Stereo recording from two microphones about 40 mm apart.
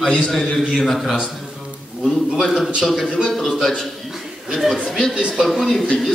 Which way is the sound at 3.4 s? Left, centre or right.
Centre.